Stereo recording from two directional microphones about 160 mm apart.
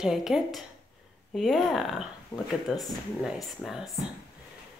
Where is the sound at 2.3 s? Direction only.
15° left (ahead or behind).